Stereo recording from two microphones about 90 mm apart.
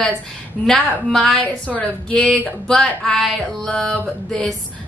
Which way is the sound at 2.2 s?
5° left (ahead or behind).